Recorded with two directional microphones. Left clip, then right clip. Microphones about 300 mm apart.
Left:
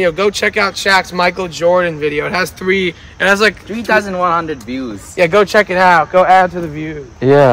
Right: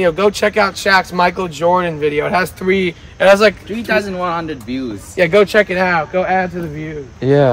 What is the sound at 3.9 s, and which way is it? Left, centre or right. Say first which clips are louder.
Speech: left 4 dB; centre.